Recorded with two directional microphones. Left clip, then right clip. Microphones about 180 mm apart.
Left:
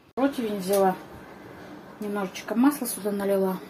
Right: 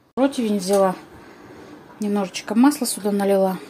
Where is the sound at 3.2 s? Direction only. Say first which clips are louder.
Right 6 dB; 55° right (ahead or behind).